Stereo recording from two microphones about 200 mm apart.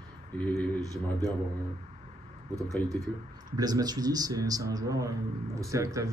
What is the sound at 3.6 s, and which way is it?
A man's voice, 20° right (ahead or behind).